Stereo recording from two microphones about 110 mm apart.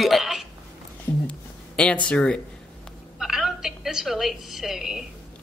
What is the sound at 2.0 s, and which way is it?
Speech, 10° left (ahead or behind).